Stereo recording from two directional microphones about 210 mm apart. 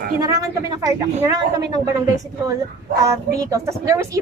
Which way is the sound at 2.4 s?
15° right (ahead or behind).